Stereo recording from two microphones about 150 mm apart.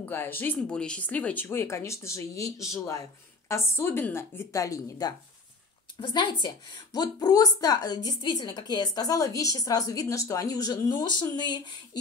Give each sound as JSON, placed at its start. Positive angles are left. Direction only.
{"t": 0.0, "sound": "a woman's voice", "side_deg": 15}